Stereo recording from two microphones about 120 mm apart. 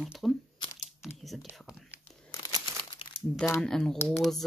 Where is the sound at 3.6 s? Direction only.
5° left (ahead or behind).